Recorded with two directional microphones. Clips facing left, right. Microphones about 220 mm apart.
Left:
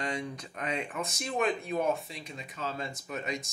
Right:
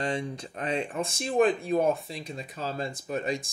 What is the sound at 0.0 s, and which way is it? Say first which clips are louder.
Speech: right 4 dB; 30° right (ahead or behind).